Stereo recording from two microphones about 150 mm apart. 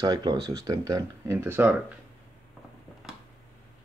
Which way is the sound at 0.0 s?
25° right (ahead or behind).